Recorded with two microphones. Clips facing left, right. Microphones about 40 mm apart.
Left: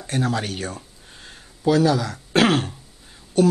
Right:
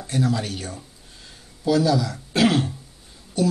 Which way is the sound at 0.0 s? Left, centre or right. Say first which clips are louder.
Even; left.